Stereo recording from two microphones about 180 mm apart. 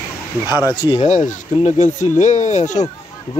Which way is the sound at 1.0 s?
40° left (ahead or behind).